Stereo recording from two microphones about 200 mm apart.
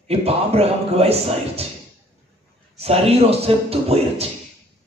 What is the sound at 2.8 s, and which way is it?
Speech, 30° right (ahead or behind).